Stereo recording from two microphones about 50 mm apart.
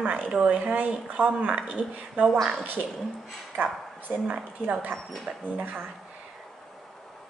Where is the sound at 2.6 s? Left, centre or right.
Right.